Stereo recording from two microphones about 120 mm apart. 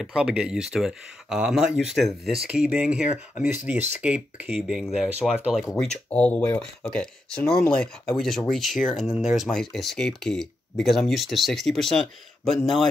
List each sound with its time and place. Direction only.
0.0 s speech: 5° right (ahead or behind)